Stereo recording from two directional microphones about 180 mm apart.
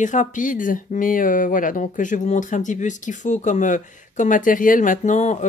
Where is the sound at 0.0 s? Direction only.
45° left (ahead or behind).